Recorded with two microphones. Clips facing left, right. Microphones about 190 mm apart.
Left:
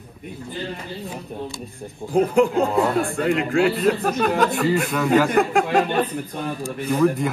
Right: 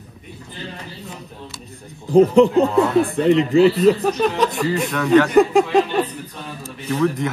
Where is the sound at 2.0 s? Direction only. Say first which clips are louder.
Right 6 dB; 45° left (ahead or behind).